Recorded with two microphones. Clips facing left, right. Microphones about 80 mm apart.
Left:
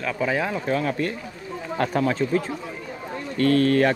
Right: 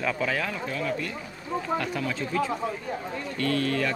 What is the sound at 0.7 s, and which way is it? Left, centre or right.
Speech, left.